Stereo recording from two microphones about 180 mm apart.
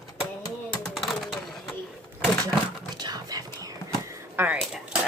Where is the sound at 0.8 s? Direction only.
Centre (ahead or behind).